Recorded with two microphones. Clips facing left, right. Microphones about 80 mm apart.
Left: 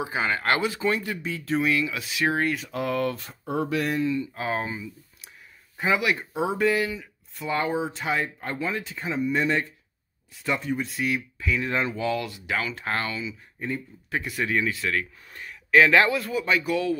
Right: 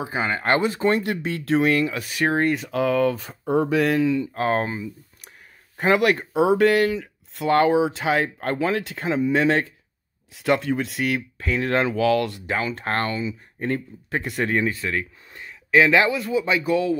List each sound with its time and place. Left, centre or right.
0.0 s speech: right
0.3 s speech: centre
0.7 s speech: right
1.9 s speech: right
3.8 s speech: right
4.3 s speech: right
11.7 s speech: right
12.4 s speech: right; by 16.1 s centre
16.1 s speech: centre
16.3 s speech: centre